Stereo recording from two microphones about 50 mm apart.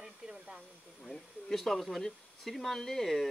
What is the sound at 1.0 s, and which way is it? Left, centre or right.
Speech, centre.